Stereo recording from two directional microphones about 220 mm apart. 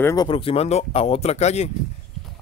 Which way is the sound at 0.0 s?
15° left (ahead or behind).